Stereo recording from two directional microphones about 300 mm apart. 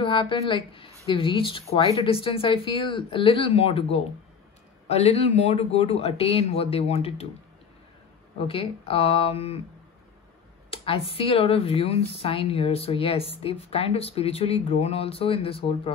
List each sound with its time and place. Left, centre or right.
0.0 s a man's voice: centre
8.5 s a man's voice: centre
10.7 s a man's voice: centre